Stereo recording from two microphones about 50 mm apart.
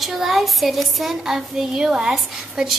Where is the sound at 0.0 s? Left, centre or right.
Centre.